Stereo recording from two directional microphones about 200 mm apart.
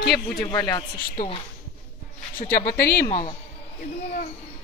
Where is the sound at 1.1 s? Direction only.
30° left (ahead or behind).